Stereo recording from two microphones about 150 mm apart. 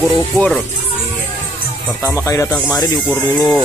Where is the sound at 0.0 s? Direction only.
Centre (ahead or behind).